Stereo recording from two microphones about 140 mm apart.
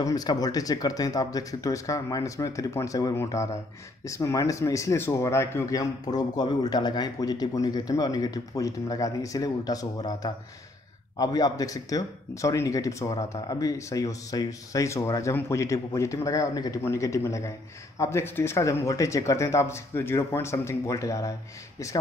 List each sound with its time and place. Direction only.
0.0 s speech: 25° left (ahead or behind)